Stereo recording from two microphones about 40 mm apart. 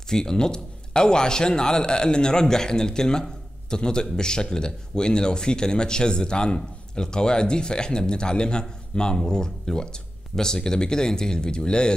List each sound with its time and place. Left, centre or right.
0.1 s speech: centre